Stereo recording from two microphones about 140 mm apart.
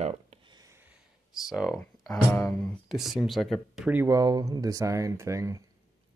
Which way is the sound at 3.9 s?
20° right (ahead or behind).